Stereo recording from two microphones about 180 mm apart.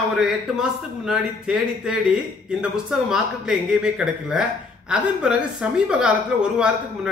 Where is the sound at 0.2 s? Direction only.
Centre (ahead or behind).